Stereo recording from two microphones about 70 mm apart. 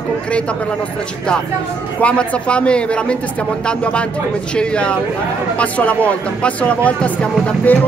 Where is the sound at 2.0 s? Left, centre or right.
Centre.